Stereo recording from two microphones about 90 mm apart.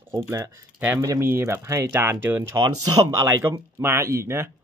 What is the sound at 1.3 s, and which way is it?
Speech, 30° right (ahead or behind).